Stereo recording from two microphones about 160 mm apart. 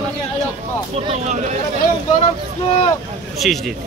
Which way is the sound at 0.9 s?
40° right (ahead or behind).